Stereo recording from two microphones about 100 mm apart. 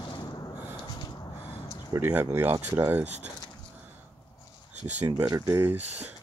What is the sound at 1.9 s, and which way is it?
Speech, 20° right (ahead or behind).